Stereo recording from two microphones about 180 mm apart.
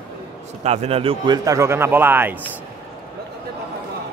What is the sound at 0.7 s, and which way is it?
A man's voice, 35° right (ahead or behind).